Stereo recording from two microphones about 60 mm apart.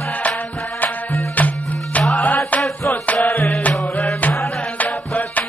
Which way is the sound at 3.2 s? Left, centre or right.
Left.